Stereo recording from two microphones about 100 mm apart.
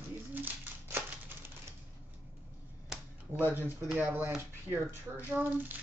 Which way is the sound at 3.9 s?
20° right (ahead or behind).